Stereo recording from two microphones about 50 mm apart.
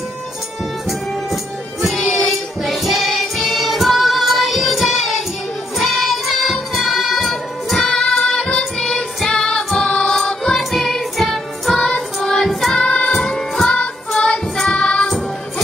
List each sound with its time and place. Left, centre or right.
0.8 s music: centre
2.0 s choir: centre
5.8 s music: centre
8.8 s music: centre
12.2 s child singing: centre
12.9 s music: centre